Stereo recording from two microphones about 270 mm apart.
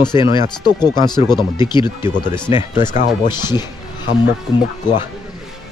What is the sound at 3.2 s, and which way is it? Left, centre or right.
Speech, centre.